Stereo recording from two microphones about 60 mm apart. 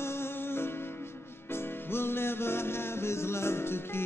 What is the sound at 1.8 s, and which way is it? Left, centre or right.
Music, left.